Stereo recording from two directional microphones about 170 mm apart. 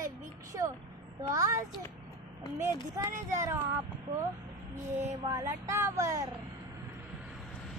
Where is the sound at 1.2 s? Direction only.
20° right (ahead or behind).